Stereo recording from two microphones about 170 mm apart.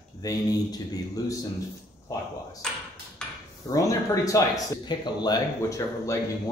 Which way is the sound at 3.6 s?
20° left (ahead or behind).